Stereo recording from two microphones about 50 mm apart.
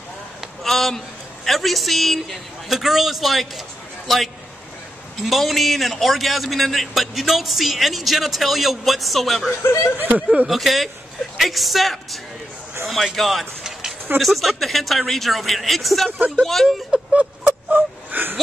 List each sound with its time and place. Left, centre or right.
0.7 s a man's voice: centre
5.2 s a man's voice: centre
9.6 s speech: left
9.9 s speech: right
10.5 s a man's voice: centre
12.8 s a sound: centre
14.1 s a man's voice: centre
16.6 s speech: centre
17.1 s a sound: right
17.7 s speech: right